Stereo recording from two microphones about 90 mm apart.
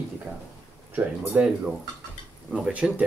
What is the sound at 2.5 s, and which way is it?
Speech, 10° right (ahead or behind).